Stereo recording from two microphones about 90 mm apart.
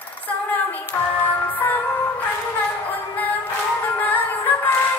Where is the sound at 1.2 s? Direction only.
20° left (ahead or behind).